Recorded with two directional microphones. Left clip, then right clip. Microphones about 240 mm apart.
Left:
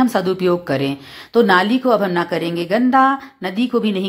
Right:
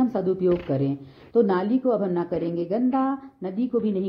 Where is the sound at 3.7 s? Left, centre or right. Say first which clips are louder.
Left 6 dB; left.